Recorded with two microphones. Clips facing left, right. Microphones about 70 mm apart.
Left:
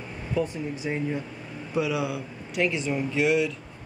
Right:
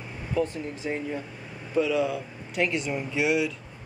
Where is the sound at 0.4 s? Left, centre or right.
Centre.